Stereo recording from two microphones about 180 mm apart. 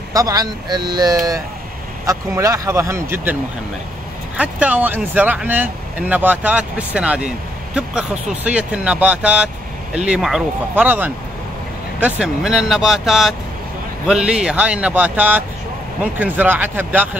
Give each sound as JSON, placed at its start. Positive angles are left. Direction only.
{"t": 0.1, "sound": "speech", "side_deg": -20}
{"t": 4.4, "sound": "speech", "side_deg": -10}